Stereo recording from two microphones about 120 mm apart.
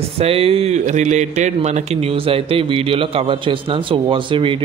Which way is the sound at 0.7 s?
85° right.